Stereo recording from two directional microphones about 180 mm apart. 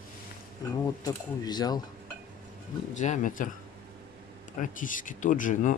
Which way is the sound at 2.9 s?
45° left (ahead or behind).